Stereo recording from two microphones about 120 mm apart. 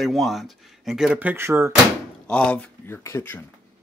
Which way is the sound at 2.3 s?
10° left (ahead or behind).